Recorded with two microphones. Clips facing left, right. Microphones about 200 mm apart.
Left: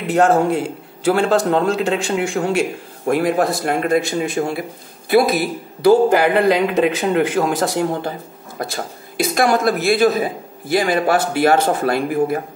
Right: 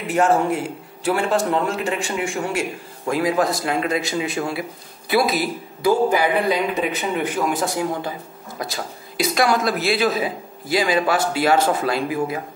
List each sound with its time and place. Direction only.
0.1 s speech: 70° left (ahead or behind)
3.1 s a man's voice: 60° left (ahead or behind)